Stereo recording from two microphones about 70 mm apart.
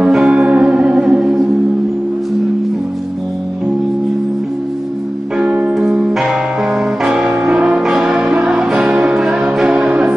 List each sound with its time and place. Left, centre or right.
0.0 s music: centre
5.4 s music: right
5.8 s music: centre